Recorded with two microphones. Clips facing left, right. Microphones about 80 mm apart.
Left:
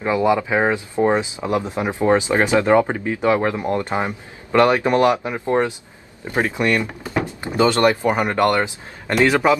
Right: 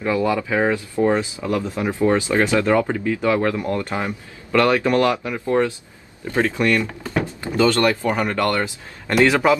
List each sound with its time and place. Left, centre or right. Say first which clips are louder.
0.0 s a man's voice: left 2 dB; left